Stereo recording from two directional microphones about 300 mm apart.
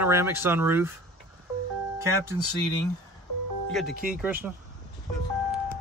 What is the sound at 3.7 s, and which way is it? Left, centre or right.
Speech, centre.